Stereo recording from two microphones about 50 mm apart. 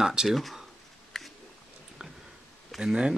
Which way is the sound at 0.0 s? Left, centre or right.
Centre.